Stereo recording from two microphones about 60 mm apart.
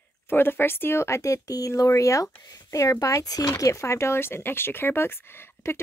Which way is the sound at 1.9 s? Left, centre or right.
Left.